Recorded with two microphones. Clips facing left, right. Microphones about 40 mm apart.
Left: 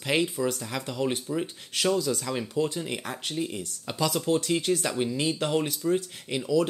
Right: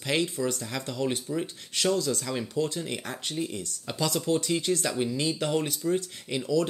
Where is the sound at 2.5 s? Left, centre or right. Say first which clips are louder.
Left 2 dB; left.